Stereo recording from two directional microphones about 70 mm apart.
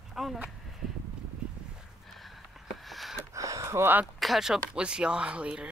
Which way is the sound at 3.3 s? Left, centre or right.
Right.